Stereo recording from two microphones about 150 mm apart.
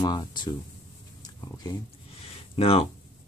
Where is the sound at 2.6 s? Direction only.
40° left (ahead or behind).